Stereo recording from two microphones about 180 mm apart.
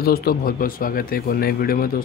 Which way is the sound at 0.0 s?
55° left (ahead or behind).